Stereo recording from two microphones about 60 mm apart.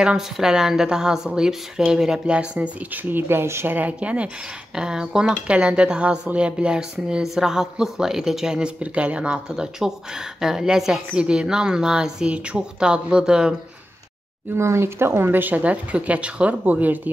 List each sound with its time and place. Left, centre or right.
0.0 s speech: centre; by 3.7 s right
3.7 s speech: right
14.5 s speech: right